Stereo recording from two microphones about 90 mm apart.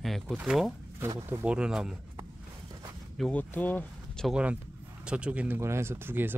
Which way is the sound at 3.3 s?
20° left (ahead or behind).